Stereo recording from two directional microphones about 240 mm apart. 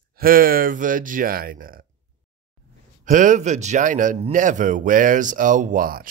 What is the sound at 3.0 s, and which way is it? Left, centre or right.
Speech, right.